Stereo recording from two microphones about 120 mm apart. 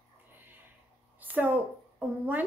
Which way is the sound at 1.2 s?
15° right (ahead or behind).